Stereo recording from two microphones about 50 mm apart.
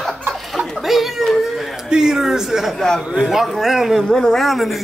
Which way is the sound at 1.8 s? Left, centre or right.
Centre.